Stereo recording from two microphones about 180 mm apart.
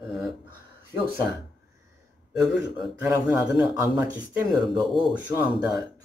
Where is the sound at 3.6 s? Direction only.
20° right (ahead or behind).